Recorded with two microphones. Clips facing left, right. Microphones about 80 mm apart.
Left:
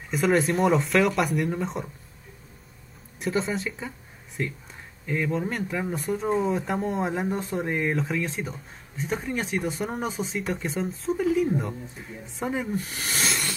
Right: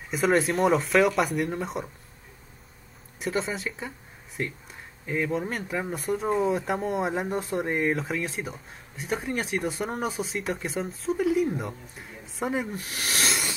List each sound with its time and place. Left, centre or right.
0.1 s speech: centre
3.2 s speech: centre
13.0 s a sound: centre